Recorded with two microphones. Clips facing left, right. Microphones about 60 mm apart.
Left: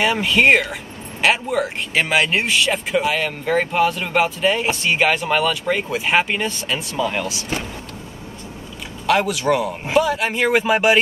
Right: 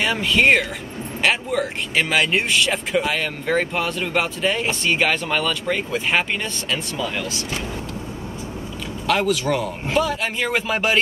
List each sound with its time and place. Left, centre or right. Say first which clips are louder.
0.0 s speech: left 2 dB; centre
7.1 s speech: left 3 dB; left
9.0 s speech: left 2 dB; centre